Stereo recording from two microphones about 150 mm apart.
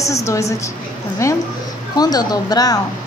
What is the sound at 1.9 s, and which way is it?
Speech, 25° left (ahead or behind).